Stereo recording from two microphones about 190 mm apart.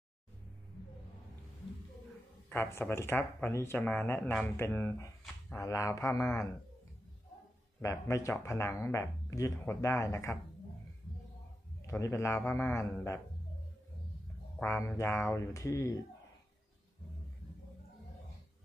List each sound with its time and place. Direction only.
2.5 s speech: 10° left (ahead or behind)
7.8 s speech: 15° left (ahead or behind)
11.8 s speech: 15° left (ahead or behind)
14.6 s speech: 10° left (ahead or behind)